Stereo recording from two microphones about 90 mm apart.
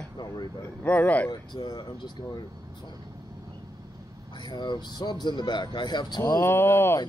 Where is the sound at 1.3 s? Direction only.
50° left (ahead or behind).